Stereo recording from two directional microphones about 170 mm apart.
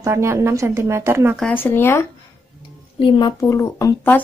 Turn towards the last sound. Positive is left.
turn(degrees=15)  # may be behind; listen again after turning